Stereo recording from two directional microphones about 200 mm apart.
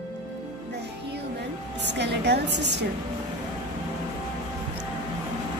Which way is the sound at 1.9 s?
60° right (ahead or behind).